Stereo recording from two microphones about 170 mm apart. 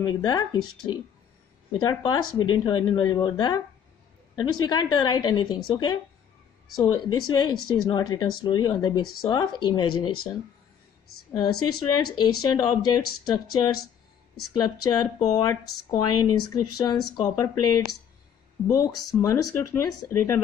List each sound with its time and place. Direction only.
0.0 s a woman's voice: 25° left (ahead or behind)
11.3 s a woman's voice: 25° left (ahead or behind)
14.6 s a woman's voice: 20° left (ahead or behind)